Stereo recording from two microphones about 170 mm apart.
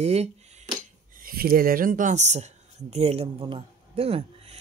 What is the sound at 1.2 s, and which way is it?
Speech, 60° right (ahead or behind).